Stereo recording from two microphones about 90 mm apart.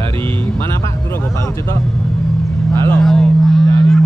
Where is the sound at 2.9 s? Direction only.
5° left (ahead or behind).